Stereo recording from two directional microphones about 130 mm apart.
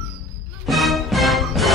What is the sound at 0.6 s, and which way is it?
Music, centre (ahead or behind).